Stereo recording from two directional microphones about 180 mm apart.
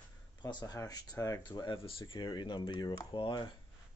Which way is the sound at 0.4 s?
25° left (ahead or behind).